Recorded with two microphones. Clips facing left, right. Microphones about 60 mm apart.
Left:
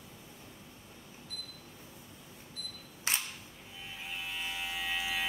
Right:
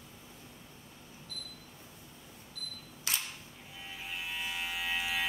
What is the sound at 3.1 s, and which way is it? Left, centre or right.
Single-lens reflex camera, left.